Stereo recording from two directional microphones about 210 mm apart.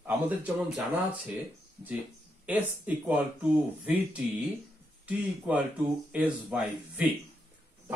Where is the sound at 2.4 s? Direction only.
10° right (ahead or behind).